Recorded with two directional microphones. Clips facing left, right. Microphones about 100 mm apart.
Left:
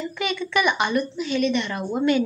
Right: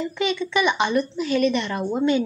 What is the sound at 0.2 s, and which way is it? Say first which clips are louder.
A woman's voice: right 1 dB; 25° right (ahead or behind).